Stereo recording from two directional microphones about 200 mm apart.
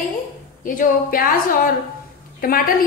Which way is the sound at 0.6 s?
45° left (ahead or behind).